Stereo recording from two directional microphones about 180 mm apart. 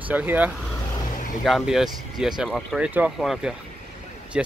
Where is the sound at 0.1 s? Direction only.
10° right (ahead or behind).